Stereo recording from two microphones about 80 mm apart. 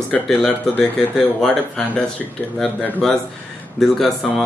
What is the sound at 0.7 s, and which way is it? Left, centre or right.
Speech, left.